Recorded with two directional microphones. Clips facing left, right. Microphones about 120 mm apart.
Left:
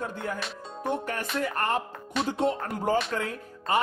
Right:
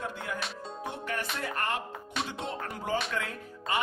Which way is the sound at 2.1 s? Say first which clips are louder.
Left 7 dB; centre (ahead or behind).